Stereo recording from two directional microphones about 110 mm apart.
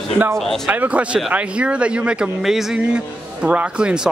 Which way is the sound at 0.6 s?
15° right (ahead or behind).